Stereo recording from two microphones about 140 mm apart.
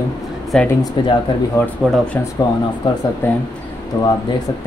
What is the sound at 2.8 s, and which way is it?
Speech, 35° left (ahead or behind).